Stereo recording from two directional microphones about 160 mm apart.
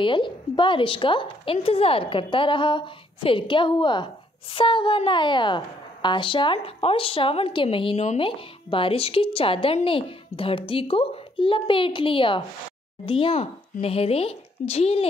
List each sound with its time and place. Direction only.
0.0 s a woman's voice: 30° left (ahead or behind)